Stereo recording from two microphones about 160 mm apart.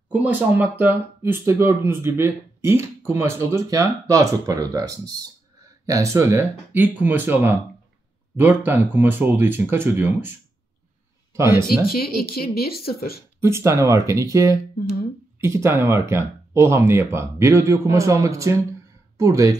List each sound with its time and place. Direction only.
0.1 s speech: 10° right (ahead or behind)
11.3 s speech: 15° right (ahead or behind)
11.6 s a woman's voice: 70° left (ahead or behind)
13.4 s speech: 15° right (ahead or behind)